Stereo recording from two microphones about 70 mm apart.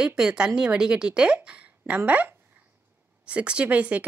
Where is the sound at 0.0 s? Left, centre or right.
Centre.